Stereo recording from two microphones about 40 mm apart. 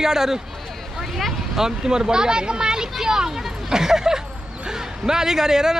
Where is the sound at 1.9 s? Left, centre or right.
Centre.